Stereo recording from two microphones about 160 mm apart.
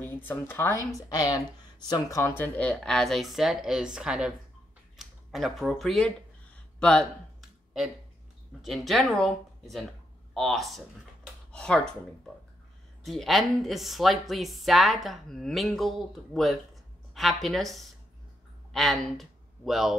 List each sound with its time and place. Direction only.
0.0 s speech: 15° left (ahead or behind)
8.6 s speech: centre (ahead or behind)
13.0 s speech: centre (ahead or behind)